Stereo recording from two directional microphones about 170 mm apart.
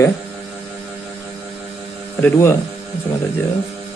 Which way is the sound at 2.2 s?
15° left (ahead or behind).